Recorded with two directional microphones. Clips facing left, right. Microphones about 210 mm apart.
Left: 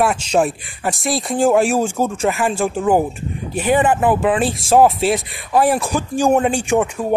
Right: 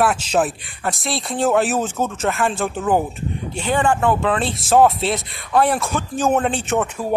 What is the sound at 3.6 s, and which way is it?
Speech, 20° left (ahead or behind).